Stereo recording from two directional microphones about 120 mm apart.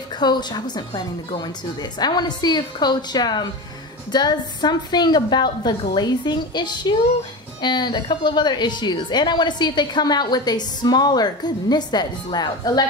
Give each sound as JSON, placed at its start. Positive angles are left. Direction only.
{"t": 0.1, "sound": "a woman's voice", "side_deg": 35}